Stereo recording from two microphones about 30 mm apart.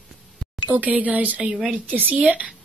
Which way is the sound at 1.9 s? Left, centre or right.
Right.